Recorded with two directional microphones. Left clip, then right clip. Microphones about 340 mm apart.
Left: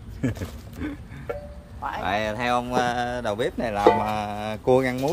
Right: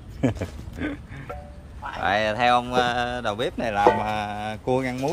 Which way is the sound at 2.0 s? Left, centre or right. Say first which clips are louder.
Right 5 dB; centre.